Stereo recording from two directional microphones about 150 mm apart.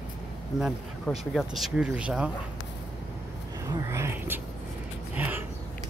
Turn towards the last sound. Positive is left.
turn(degrees=-10)  # may be behind; listen again after turning